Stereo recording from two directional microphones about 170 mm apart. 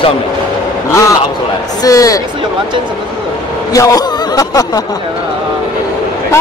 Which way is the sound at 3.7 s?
20° left (ahead or behind).